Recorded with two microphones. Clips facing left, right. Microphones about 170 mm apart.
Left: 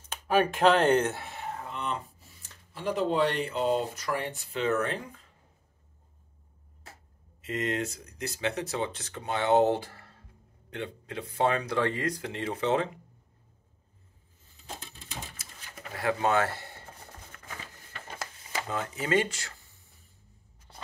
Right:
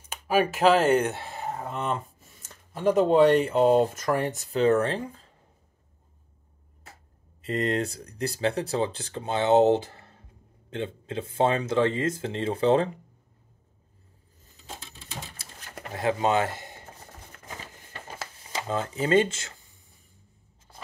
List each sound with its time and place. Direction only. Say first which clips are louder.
0.0 s speech: right 1 dB; 10° right (ahead or behind)
1.1 s speech: right 4 dB; 35° right (ahead or behind)
7.4 s speech: right 4 dB; 35° right (ahead or behind)
15.9 s chopping: right 3 dB; 25° right (ahead or behind)
17.3 s typewriter: right 4 dB; 25° right (ahead or behind)
18.5 s speech: right 4 dB; 25° right (ahead or behind)